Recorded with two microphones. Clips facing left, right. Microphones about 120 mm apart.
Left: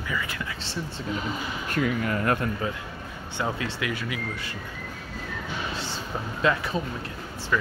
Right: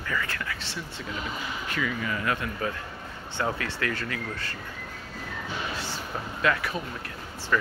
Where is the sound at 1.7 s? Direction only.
55° left (ahead or behind).